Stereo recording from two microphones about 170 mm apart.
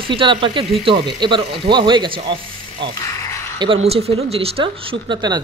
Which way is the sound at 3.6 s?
35° right (ahead or behind).